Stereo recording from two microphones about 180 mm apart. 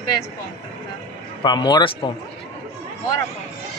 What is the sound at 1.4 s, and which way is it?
Speech, 25° left (ahead or behind).